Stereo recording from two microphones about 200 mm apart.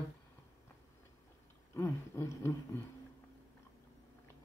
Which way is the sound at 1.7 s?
10° left (ahead or behind).